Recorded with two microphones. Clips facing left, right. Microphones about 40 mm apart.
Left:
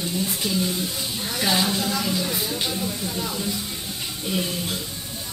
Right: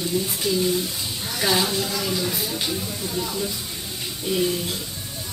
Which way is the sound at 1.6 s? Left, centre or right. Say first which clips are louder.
Left 1 dB; centre.